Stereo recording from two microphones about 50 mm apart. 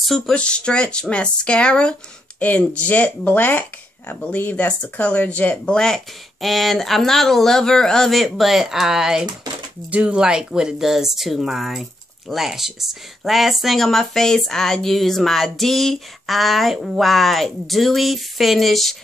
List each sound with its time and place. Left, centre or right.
0.3 s speech: centre
5.7 s speech: centre
6.4 s speech: centre
8.1 s speech: centre
13.8 s speech: centre